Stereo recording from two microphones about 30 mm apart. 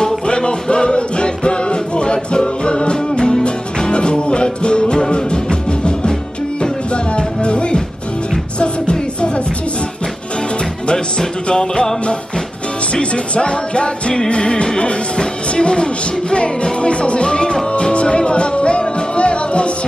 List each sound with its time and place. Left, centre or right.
0.3 s music: left
10.9 s music: left
12.9 s music: left